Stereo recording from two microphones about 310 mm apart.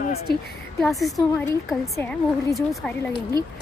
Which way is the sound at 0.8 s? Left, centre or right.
Centre.